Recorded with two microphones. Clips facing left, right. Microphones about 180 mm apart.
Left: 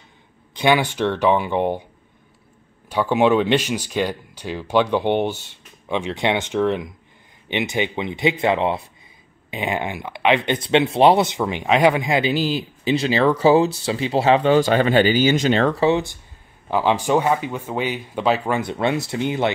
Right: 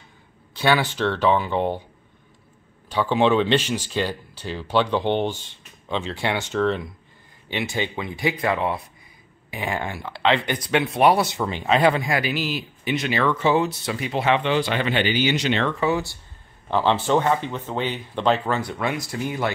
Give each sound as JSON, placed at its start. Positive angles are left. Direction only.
{"t": 0.6, "sound": "speech", "side_deg": 15}
{"t": 2.9, "sound": "speech", "side_deg": 10}
{"t": 15.9, "sound": "speech", "side_deg": 20}
{"t": 18.6, "sound": "speech", "side_deg": 25}